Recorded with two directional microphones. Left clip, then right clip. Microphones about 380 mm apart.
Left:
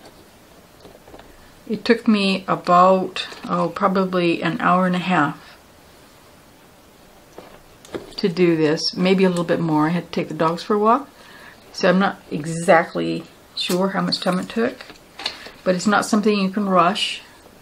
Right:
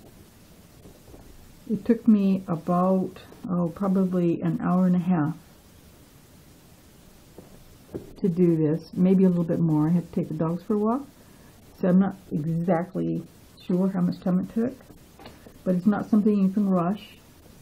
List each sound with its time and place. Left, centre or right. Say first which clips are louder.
1.8 s speech: left 6 dB; centre
7.9 s speech: left 6 dB; centre